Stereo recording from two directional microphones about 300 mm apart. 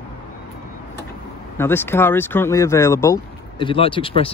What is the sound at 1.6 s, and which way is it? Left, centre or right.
Speech, centre.